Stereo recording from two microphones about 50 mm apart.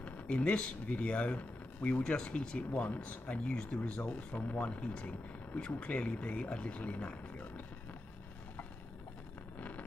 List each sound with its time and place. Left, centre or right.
0.0 s speech: left
9.6 s vehicle: left